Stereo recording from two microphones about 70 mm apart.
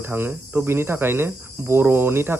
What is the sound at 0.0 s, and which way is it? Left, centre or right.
Speech, right.